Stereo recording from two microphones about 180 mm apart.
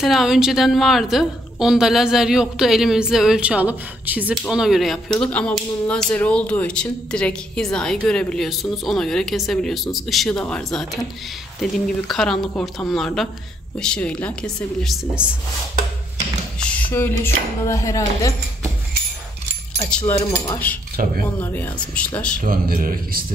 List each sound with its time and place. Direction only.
0.0 s speech: centre (ahead or behind)
16.5 s speech: 5° left (ahead or behind)
20.1 s speech: 15° left (ahead or behind)
21.0 s speech: 50° right (ahead or behind)
21.4 s speech: 10° left (ahead or behind)
22.4 s speech: 50° right (ahead or behind)